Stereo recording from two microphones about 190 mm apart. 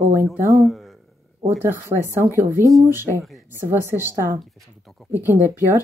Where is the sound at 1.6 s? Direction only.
10° right (ahead or behind).